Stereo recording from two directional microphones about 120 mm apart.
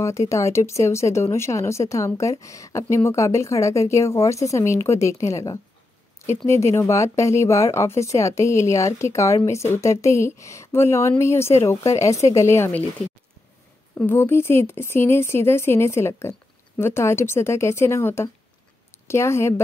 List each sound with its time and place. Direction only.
0.3 s speech: 25° left (ahead or behind)
13.9 s speech: 15° left (ahead or behind)